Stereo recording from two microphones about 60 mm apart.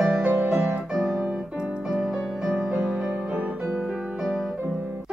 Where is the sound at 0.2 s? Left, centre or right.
Right.